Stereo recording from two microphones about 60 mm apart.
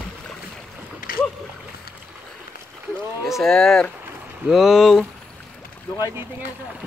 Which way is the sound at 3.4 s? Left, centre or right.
Centre.